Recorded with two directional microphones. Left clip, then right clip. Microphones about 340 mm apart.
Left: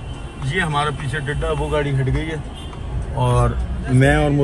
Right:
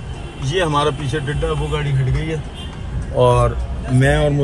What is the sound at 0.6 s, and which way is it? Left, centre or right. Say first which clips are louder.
A man's voice: right 3 dB; centre.